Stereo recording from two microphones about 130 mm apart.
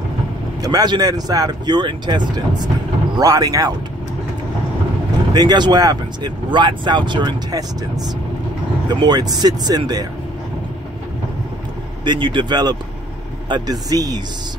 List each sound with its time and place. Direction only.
0.6 s speech: 30° right (ahead or behind)
5.3 s speech: 30° right (ahead or behind)
12.0 s speech: 35° right (ahead or behind)